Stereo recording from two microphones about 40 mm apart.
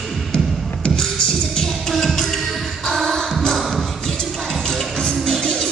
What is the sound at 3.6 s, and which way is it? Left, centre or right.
Music, centre.